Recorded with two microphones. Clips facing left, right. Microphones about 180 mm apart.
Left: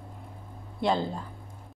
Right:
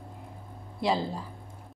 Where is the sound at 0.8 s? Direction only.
5° right (ahead or behind).